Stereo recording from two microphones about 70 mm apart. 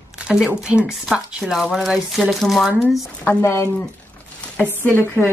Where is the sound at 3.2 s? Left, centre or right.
Left.